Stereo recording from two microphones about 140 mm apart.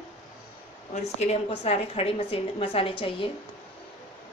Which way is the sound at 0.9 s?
50° left (ahead or behind).